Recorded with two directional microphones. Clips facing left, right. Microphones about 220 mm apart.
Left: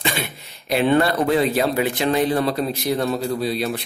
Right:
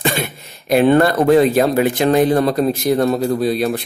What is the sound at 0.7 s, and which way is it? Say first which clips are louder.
Speech: right 5 dB; 45° right (ahead or behind).